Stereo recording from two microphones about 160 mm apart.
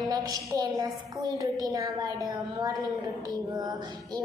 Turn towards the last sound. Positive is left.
turn(degrees=-25)  # may be behind; listen again after turning